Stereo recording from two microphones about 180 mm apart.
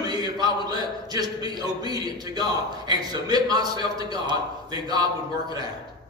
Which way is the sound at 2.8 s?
20° right (ahead or behind).